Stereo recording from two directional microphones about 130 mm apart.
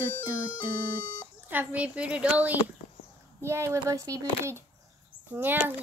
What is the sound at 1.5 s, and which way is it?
A child's voice, 10° right (ahead or behind).